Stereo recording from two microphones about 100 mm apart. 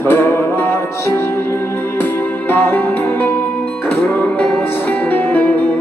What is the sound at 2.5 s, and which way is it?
Music, 15° left (ahead or behind).